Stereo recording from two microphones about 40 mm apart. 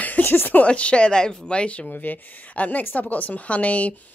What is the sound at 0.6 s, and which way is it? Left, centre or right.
Speech, left.